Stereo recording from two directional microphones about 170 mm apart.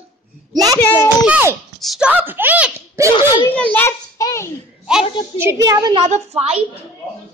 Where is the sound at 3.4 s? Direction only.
10° left (ahead or behind).